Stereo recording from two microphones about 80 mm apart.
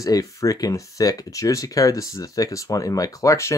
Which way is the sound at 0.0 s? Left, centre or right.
Left.